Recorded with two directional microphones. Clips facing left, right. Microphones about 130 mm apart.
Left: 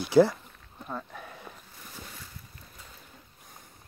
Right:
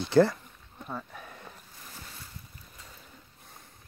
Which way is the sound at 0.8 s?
Centre (ahead or behind).